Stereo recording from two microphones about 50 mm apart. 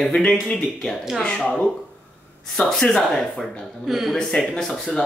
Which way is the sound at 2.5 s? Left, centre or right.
Centre.